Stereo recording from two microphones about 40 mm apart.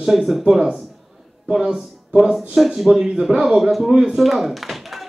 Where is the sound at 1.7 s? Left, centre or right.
Centre.